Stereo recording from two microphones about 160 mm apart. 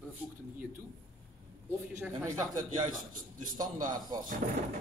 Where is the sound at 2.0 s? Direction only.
15° right (ahead or behind).